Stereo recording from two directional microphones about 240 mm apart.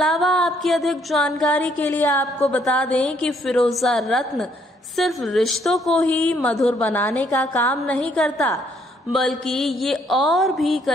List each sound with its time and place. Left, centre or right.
0.0 s a woman's voice: centre